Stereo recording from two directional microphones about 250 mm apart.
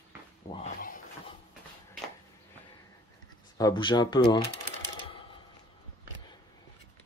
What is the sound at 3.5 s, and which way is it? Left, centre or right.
Speech, centre.